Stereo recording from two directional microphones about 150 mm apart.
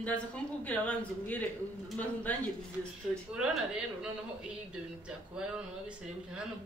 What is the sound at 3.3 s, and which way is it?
A woman's voice, 5° right (ahead or behind).